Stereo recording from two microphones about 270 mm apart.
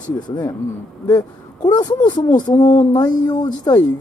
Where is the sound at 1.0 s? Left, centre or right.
Centre.